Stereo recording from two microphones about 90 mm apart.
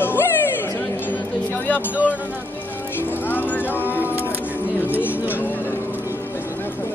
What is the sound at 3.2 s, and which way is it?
Speech, 20° left (ahead or behind).